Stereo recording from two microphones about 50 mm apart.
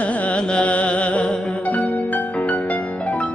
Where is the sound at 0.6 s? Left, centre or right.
Left.